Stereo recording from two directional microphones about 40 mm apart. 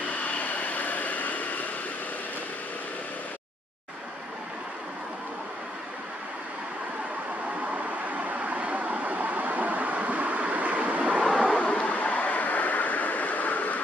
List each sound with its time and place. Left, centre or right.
0.2 s vehicle: left
7.7 s vehicle: right
11.4 s a sound: left
12.0 s vehicle: left